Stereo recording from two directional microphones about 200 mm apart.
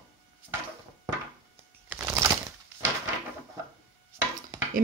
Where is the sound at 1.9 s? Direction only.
10° right (ahead or behind).